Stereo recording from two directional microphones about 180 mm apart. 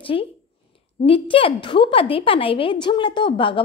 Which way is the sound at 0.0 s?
30° left (ahead or behind).